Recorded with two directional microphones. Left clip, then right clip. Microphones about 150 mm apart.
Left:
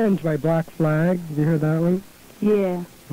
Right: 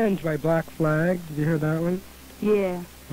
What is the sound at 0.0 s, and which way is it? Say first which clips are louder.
A man's voice: left 2 dB; 30° left (ahead or behind).